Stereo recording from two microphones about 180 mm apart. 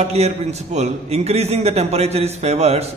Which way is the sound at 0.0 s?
35° right (ahead or behind).